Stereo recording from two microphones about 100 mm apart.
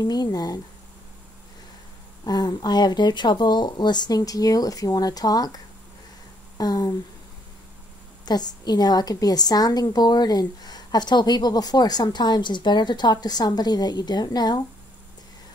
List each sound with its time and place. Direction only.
0.0 s speech: 40° left (ahead or behind)
2.2 s a woman's voice: 40° left (ahead or behind)
6.6 s speech: 40° left (ahead or behind)
8.3 s a woman's voice: 45° left (ahead or behind)